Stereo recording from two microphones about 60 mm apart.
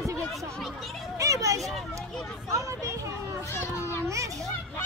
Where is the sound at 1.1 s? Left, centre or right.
Right.